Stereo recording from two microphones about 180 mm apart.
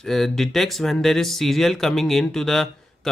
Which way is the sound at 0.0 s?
Centre (ahead or behind).